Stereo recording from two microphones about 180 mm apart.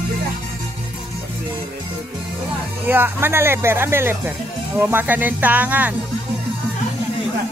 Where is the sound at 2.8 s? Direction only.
10° right (ahead or behind).